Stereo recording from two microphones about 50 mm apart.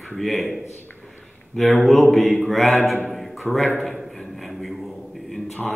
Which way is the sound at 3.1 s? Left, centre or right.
Centre.